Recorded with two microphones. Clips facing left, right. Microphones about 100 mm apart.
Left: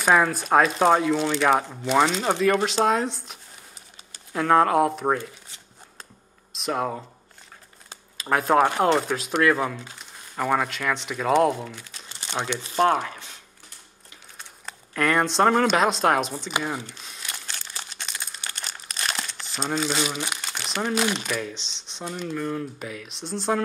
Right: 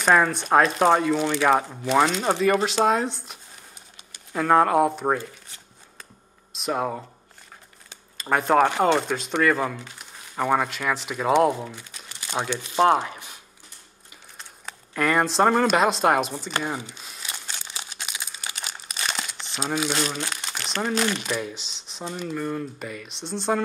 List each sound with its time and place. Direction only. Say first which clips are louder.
0.0 s speech: even; centre (ahead or behind)
6.5 s speech: even; centre (ahead or behind)
8.2 s speech: even; centre (ahead or behind)
12.9 s a sound: right 2 dB; 20° right (ahead or behind)
14.7 s speech: even; centre (ahead or behind)
16.6 s crumpling: even; 5° right (ahead or behind)
19.4 s speech: even; centre (ahead or behind)
21.3 s speech: right 1 dB; 5° right (ahead or behind)